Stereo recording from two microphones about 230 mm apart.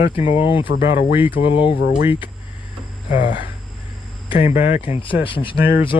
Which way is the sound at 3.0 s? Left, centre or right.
Left.